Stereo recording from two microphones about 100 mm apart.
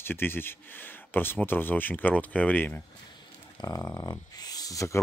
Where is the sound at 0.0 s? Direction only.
20° left (ahead or behind).